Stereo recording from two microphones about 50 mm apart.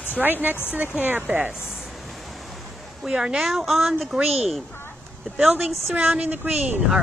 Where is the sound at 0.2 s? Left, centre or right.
Right.